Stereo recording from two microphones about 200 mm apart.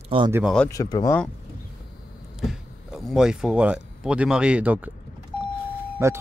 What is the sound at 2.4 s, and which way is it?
Speech, centre (ahead or behind).